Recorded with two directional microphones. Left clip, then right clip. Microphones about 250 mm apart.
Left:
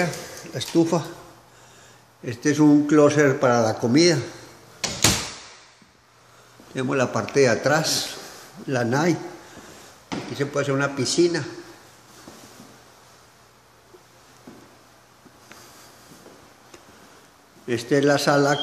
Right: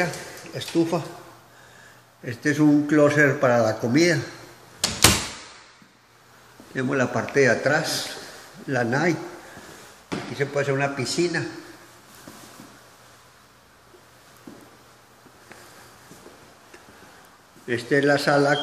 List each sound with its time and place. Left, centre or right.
0.6 s speech: left
2.2 s a man's voice: centre
6.7 s a man's voice: centre
10.3 s a man's voice: centre
17.6 s a man's voice: centre